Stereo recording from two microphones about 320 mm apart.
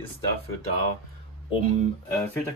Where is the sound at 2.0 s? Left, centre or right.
Centre.